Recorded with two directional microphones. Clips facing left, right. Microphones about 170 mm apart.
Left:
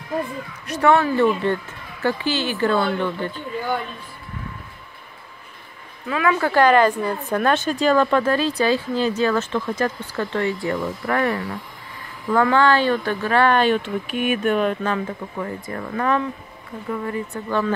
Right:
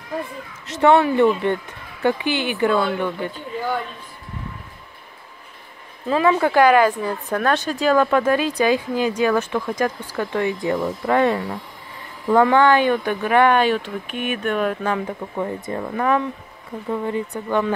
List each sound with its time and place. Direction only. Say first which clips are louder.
0.7 s speech: right 2 dB; 20° right (ahead or behind)
6.0 s speech: right 3 dB; 30° right (ahead or behind); by 13.7 s 10° right (ahead or behind)
13.8 s speech: left 3 dB; 5° left (ahead or behind); by 16.3 s 10° right (ahead or behind)
16.9 s speech: right 2 dB; 20° right (ahead or behind)